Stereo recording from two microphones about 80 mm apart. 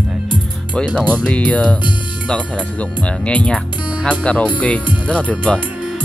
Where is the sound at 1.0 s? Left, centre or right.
Centre.